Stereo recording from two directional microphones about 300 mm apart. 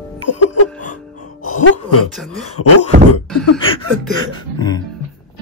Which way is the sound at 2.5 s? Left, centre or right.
Left.